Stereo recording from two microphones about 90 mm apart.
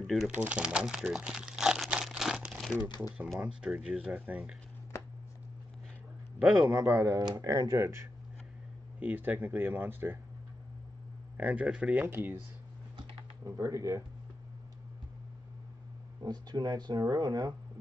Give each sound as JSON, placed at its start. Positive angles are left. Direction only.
{"t": 0.0, "sound": "speech", "side_deg": 0}
{"t": 0.3, "sound": "crumpling", "side_deg": -15}
{"t": 3.3, "sound": "speech", "side_deg": -10}
{"t": 6.7, "sound": "speech", "side_deg": -35}
{"t": 9.0, "sound": "speech", "side_deg": -20}
{"t": 11.3, "sound": "speech", "side_deg": -15}
{"t": 13.5, "sound": "speech", "side_deg": -35}
{"t": 16.2, "sound": "speech", "side_deg": -50}